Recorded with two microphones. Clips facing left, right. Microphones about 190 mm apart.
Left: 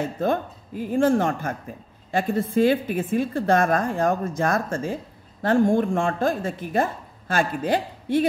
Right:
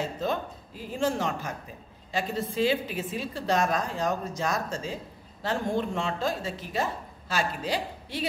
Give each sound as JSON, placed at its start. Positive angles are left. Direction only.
{"t": 0.0, "sound": "a woman's voice", "side_deg": 55}